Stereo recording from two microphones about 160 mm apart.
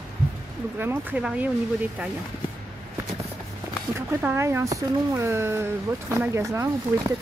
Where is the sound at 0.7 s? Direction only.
15° right (ahead or behind).